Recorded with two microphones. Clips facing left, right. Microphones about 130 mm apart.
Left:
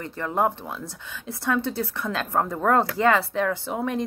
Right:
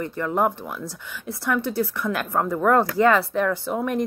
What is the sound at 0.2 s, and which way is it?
Speech, 25° left (ahead or behind).